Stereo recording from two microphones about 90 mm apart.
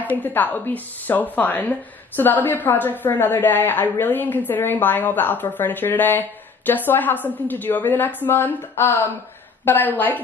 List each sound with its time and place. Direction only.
0.2 s a woman's voice: 20° left (ahead or behind)